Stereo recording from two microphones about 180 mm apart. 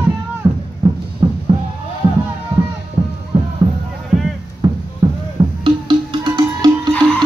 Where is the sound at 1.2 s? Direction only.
25° right (ahead or behind).